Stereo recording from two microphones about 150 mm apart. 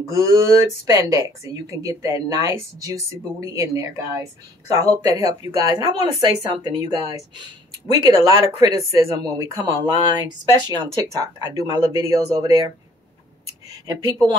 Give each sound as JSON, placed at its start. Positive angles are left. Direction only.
{"t": 0.0, "sound": "speech", "side_deg": -20}